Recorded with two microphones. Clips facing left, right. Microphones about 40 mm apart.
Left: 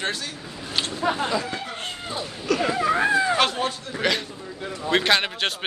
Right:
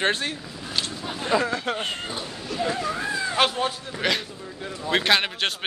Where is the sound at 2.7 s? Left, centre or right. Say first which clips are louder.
Left 6 dB; left.